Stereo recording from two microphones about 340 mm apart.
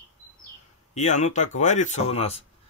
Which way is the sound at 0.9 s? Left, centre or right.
Left.